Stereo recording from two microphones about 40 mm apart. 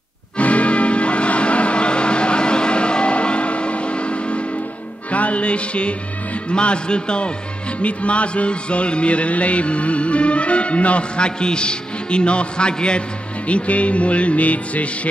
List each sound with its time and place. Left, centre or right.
0.4 s music: left